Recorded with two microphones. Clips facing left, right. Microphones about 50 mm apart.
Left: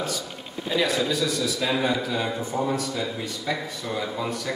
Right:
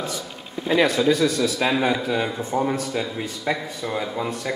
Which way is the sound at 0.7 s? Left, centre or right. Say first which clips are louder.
Right 5 dB; right.